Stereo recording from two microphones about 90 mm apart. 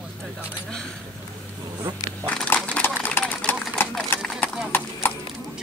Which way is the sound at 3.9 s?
5° left (ahead or behind).